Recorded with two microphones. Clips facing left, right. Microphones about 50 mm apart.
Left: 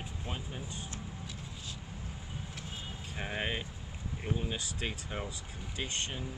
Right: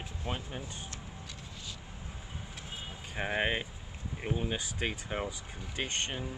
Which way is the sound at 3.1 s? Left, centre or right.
Right.